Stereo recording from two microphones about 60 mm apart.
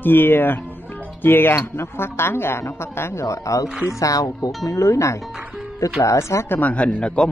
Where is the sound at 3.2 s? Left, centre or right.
Left.